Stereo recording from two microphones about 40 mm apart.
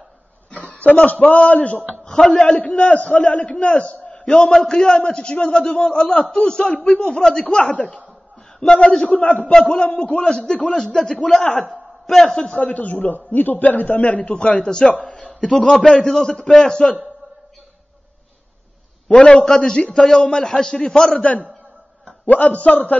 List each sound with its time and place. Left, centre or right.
0.5 s a man's voice: left
2.0 s a man's voice: left
2.4 s a man's voice: left
4.5 s a man's voice: left
7.4 s a man's voice: left
9.0 s a man's voice: left
10.2 s a man's voice: left
12.6 s a man's voice: left
15.6 s a man's voice: centre
19.0 s a man's voice: left
21.1 s a man's voice: left